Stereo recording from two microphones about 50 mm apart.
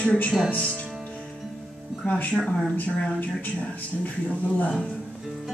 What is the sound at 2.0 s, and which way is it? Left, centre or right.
Speech, left.